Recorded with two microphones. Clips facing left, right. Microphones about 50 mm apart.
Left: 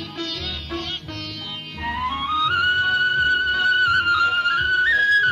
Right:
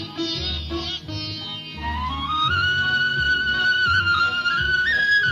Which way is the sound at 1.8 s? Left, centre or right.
Centre.